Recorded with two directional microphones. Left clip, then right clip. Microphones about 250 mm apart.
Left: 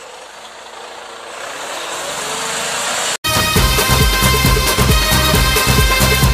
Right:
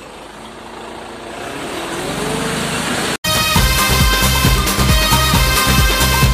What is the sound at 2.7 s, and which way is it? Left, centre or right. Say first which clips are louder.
Vehicle: even; left.